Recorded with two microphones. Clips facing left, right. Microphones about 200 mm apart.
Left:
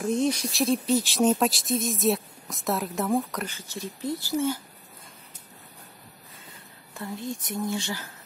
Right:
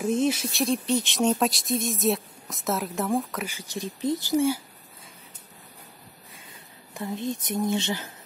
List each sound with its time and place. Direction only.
0.0 s speech: 5° right (ahead or behind)
6.9 s speech: 20° right (ahead or behind)